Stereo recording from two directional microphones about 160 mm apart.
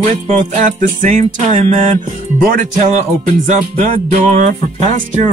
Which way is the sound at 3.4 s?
50° right (ahead or behind).